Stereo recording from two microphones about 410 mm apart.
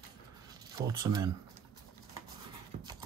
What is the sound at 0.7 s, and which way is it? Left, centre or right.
Speech, centre.